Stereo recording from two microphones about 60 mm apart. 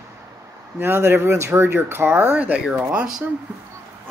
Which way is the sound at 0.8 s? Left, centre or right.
Right.